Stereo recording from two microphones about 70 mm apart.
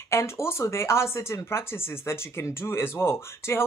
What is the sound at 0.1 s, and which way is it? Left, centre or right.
Speech, left.